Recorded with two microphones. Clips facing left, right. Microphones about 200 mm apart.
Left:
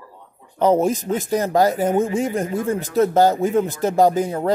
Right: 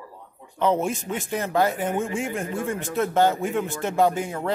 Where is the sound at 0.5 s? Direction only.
40° left (ahead or behind).